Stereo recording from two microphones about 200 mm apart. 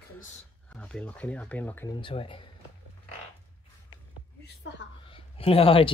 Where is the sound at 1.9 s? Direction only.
25° left (ahead or behind).